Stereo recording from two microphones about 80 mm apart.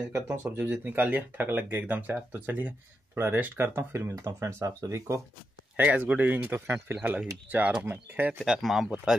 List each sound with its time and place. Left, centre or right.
0.1 s speech: right
4.1 s speech: right
5.8 s speech: centre
8.5 s speech: centre